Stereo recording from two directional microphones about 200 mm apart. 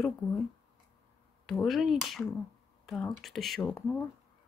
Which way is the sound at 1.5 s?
Centre (ahead or behind).